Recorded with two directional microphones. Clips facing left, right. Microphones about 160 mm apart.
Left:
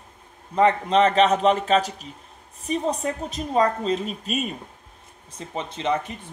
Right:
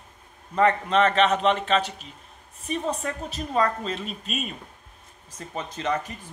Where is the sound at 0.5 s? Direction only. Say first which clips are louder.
Left 2 dB; 30° left (ahead or behind).